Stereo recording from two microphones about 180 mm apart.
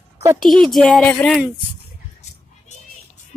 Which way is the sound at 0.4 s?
Centre (ahead or behind).